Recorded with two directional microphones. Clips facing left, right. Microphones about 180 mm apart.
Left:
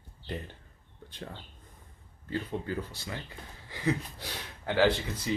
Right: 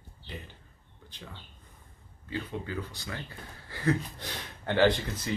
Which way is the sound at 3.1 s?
15° left (ahead or behind).